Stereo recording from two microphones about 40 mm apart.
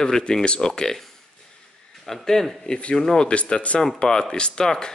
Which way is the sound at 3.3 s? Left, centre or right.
Left.